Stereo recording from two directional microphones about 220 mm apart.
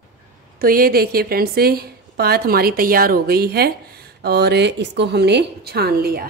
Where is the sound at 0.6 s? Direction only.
40° right (ahead or behind).